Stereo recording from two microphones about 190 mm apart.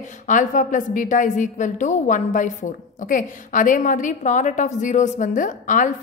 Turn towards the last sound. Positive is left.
turn(degrees=40)  # may be behind; listen again after turning